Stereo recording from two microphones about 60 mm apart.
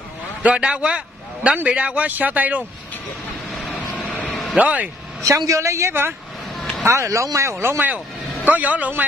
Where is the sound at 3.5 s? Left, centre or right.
Centre.